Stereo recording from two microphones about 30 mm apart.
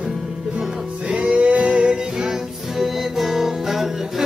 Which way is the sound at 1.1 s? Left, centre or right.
Right.